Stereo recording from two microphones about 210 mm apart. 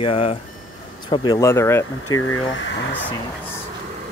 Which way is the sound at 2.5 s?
60° left (ahead or behind).